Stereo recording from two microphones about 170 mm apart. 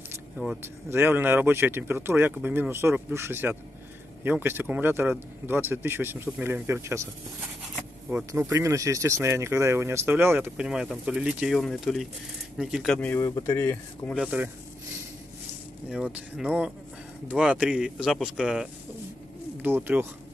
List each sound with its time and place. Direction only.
0.8 s speech: 15° right (ahead or behind)
8.3 s speech: 15° right (ahead or behind); by 14.1 s 10° left (ahead or behind)
14.1 s speech: 5° right (ahead or behind)
15.9 s speech: 5° right (ahead or behind)
19.6 s speech: 10° right (ahead or behind)